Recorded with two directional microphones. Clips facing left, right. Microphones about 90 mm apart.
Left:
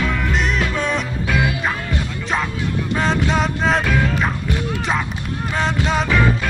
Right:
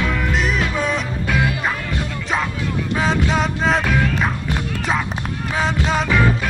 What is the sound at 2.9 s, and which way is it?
Music, centre (ahead or behind).